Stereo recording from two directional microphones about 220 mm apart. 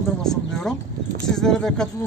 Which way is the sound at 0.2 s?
Centre (ahead or behind).